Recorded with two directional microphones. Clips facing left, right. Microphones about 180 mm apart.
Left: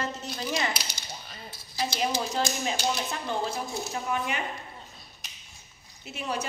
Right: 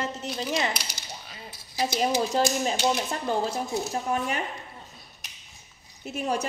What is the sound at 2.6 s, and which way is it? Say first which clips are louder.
Speech: right 4 dB; 40° right (ahead or behind).